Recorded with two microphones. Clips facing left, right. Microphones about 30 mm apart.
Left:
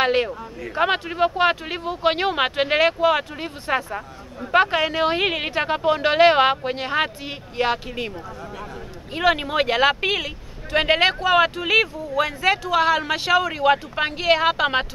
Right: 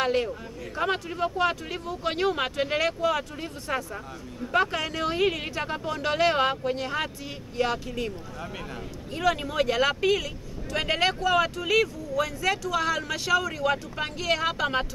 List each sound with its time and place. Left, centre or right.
0.0 s speech: left
9.1 s speech: left